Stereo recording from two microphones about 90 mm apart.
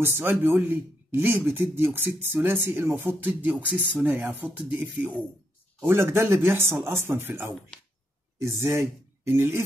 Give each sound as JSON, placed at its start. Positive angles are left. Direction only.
{"t": 0.0, "sound": "a man's voice", "side_deg": -25}
{"t": 5.8, "sound": "a man's voice", "side_deg": -25}